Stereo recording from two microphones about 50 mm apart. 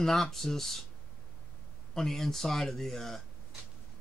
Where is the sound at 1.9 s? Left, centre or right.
Centre.